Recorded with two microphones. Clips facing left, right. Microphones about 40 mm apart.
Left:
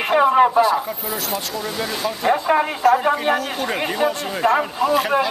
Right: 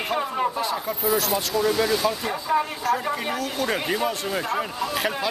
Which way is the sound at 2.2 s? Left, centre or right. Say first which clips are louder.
Left 7 dB; left.